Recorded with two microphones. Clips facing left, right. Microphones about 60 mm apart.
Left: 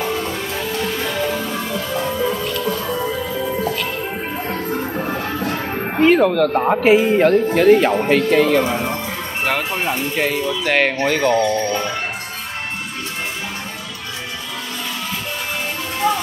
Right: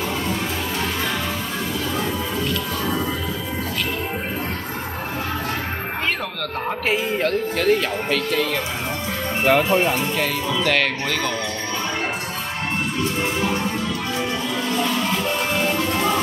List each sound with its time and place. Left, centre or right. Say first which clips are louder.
5.9 s music: left 15 dB; centre
6.5 s speech: left 9 dB; left
6.8 s speech: left 8 dB; centre
9.4 s speech: right 5 dB; centre
10.1 s speech: left 2 dB; centre